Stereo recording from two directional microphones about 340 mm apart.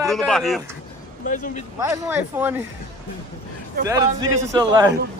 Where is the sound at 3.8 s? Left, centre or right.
Centre.